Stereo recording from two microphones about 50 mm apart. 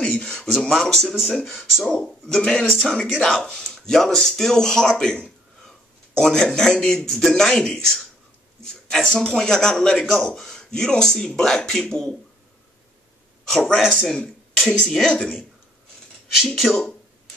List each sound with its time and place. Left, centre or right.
0.0 s a sound: centre
0.5 s a man's voice: centre
2.2 s a man's voice: centre
5.2 s a sound: centre
6.6 s a man's voice: centre
13.5 s a man's voice: centre
16.3 s speech: centre